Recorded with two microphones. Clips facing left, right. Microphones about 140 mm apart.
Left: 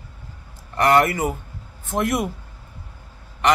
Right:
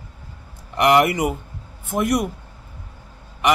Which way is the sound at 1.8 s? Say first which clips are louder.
Right 2 dB; centre (ahead or behind).